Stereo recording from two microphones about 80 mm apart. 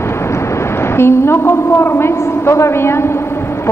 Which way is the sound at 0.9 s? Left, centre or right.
Left.